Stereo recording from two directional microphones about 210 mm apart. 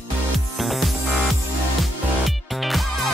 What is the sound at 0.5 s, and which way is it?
Music, centre (ahead or behind).